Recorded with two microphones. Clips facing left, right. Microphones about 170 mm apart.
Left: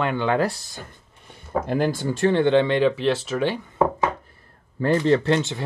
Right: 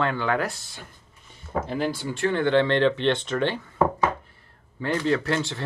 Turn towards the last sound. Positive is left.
turn(degrees=20)  # may be behind; listen again after turning